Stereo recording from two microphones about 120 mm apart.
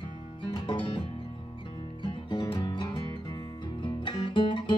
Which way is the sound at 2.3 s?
40° left (ahead or behind).